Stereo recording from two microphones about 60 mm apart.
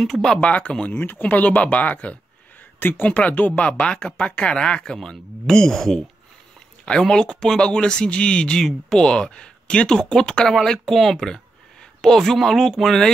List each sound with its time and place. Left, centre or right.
0.0 s speech: centre
0.4 s speech: left; by 13.1 s centre